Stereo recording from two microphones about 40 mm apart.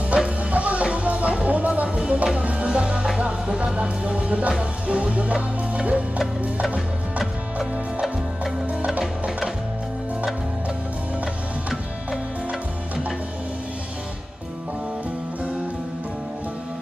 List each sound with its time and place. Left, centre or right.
0.1 s music: right
3.4 s a sound: right
4.6 s music: right